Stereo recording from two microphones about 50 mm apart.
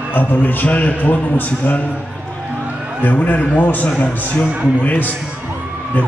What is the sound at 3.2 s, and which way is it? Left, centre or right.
A man's voice, left.